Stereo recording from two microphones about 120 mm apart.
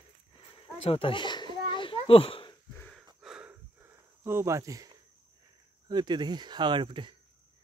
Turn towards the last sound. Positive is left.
turn(degrees=-40)  # may be behind; listen again after turning